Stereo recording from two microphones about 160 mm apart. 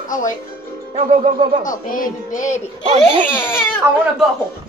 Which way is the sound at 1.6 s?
55° left (ahead or behind).